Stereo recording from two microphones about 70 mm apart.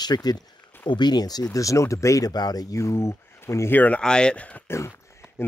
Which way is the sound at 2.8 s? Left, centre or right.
Left.